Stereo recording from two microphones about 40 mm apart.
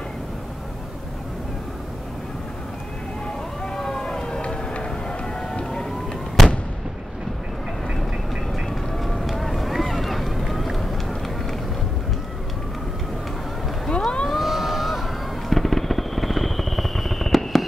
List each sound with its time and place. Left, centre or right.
3.6 s vehicle: centre
4.4 s a sound: left; by 6.5 s centre
8.9 s vehicle: centre
13.8 s vehicle: left
14.4 s vehicle: centre
15.5 s vehicle: centre